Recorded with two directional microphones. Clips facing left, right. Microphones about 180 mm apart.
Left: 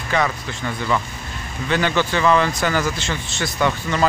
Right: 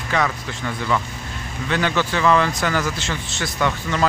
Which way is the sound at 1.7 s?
Centre (ahead or behind).